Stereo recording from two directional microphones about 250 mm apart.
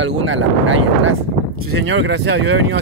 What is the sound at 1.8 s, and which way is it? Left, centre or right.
Speech, right.